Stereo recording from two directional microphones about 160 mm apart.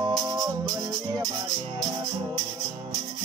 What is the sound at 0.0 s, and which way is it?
Music, 25° right (ahead or behind).